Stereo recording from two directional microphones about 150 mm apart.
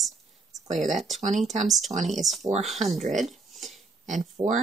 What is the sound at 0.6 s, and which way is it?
Speech, 55° right (ahead or behind).